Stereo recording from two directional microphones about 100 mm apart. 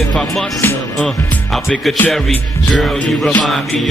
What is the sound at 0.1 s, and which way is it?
Music, 5° left (ahead or behind).